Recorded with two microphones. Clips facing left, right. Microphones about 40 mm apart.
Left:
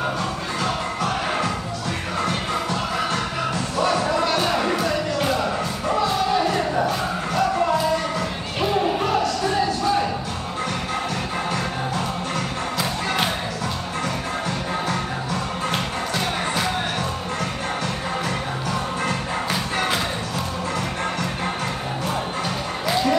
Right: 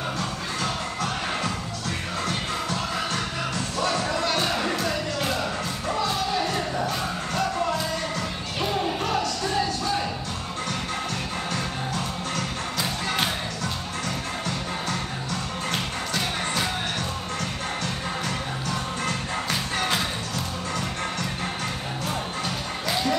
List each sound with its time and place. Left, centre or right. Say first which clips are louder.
2.2 s music: left 4 dB; centre
19.0 s music: left 3 dB; centre
22.8 s music: left 5 dB; centre